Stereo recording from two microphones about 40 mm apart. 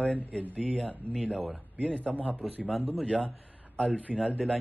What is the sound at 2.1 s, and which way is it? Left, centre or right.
Speech, left.